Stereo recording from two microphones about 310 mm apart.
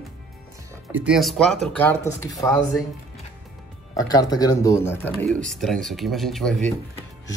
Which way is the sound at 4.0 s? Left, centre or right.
Centre.